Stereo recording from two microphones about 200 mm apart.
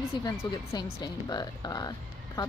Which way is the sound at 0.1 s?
20° left (ahead or behind).